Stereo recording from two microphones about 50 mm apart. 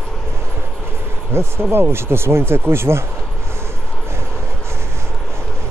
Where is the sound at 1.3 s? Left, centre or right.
Right.